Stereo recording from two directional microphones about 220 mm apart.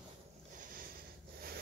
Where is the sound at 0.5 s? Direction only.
40° right (ahead or behind).